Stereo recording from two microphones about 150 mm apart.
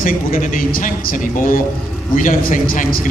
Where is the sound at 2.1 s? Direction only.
60° left (ahead or behind).